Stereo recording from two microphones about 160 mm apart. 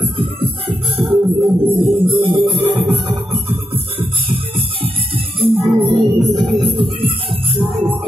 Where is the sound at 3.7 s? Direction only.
35° right (ahead or behind).